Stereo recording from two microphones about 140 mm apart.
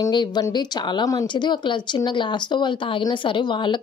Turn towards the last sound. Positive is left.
turn(degrees=35)  # may be behind; listen again after turning